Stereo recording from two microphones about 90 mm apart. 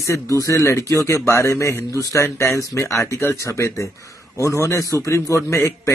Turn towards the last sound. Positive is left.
turn(degrees=35)  # may be behind; listen again after turning